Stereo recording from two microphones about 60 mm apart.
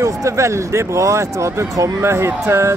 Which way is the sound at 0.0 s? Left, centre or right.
Right.